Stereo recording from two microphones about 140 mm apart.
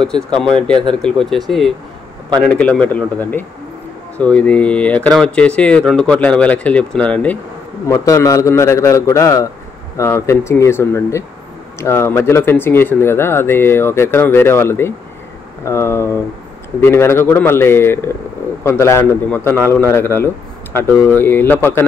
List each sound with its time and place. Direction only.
0.0 s speech: 5° left (ahead or behind)
2.4 s speech: 10° left (ahead or behind)
7.9 s a man's voice: 25° left (ahead or behind)